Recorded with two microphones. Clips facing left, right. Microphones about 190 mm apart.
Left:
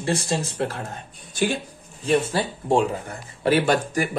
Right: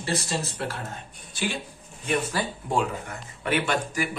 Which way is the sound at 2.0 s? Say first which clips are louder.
Left 5 dB; 30° left (ahead or behind).